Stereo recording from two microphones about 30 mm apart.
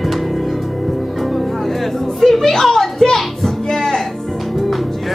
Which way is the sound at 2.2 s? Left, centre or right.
Centre.